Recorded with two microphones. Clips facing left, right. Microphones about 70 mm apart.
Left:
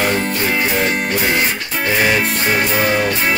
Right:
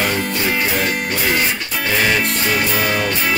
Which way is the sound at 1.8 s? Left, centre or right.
Centre.